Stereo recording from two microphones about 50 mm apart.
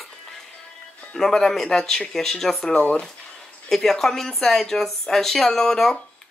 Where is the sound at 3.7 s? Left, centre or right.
Centre.